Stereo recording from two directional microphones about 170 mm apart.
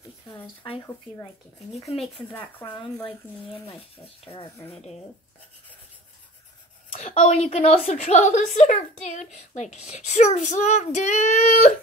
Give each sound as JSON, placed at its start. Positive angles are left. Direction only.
{"t": 0.3, "sound": "speech", "side_deg": 30}
{"t": 1.9, "sound": "speech", "side_deg": 35}
{"t": 7.0, "sound": "a woman's voice", "side_deg": 45}